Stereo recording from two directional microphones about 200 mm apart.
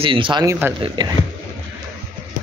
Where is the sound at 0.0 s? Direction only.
25° right (ahead or behind).